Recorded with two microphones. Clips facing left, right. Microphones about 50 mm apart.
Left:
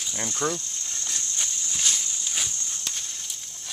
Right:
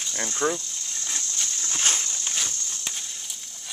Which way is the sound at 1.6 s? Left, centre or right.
Right.